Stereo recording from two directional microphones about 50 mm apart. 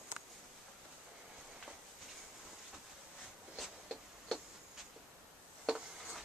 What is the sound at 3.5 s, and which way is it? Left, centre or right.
Writing, centre.